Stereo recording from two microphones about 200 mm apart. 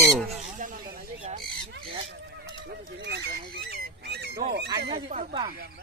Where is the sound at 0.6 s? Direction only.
45° right (ahead or behind).